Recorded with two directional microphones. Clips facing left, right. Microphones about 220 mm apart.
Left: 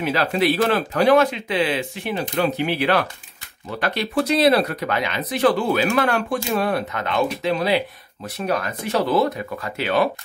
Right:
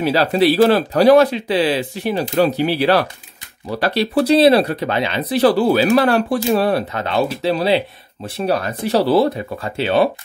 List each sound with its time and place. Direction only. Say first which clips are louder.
0.0 s speech: right 5 dB; 35° right (ahead or behind)